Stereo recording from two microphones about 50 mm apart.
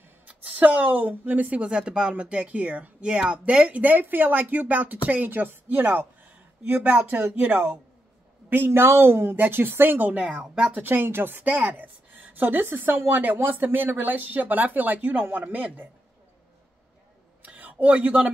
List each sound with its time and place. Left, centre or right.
0.3 s speech: right
8.6 s a woman's voice: right
11.6 s a woman's voice: right
17.4 s a sound: right